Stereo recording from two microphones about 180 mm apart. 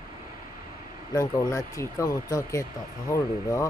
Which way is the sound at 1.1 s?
20° left (ahead or behind).